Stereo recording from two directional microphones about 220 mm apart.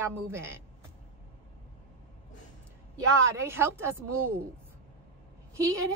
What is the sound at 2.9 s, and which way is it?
A woman's voice, 10° right (ahead or behind).